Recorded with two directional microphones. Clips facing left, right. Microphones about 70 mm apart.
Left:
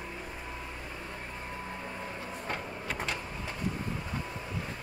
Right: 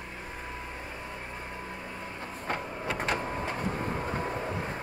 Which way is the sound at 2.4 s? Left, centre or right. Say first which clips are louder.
Right 6 dB; right.